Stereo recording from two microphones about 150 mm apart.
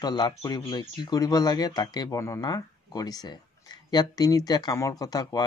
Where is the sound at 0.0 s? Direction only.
25° left (ahead or behind).